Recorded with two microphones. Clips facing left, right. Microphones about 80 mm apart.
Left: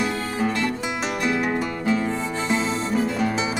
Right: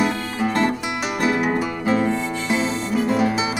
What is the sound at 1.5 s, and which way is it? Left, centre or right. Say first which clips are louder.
Music: right 2 dB; right.